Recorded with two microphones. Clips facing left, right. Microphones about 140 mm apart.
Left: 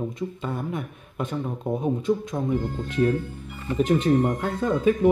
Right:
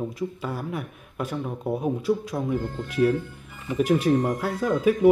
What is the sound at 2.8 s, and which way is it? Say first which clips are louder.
Speech: right 2 dB; 10° right (ahead or behind).